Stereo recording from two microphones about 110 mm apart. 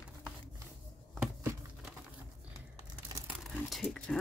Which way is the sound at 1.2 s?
20° right (ahead or behind).